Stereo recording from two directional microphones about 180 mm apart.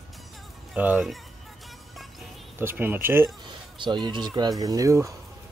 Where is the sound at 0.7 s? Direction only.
5° right (ahead or behind).